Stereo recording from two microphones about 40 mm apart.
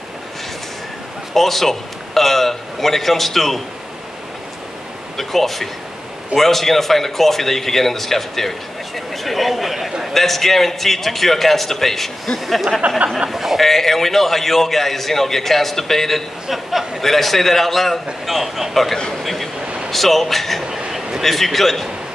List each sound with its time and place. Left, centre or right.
1.3 s a man's voice: centre
5.1 s speech: centre
12.8 s speech: right
13.3 s a man's voice: centre
13.6 s speech: centre
16.4 s speech: centre